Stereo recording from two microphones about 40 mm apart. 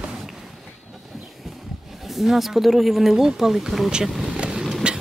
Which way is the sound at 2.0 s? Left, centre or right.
Centre.